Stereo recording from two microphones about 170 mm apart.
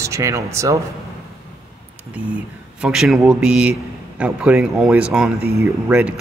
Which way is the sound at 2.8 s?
5° right (ahead or behind).